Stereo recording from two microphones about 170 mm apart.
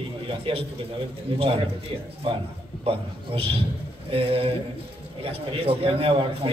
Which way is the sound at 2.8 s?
35° right (ahead or behind).